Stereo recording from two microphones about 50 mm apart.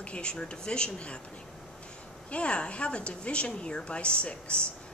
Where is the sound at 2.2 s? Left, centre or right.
Left.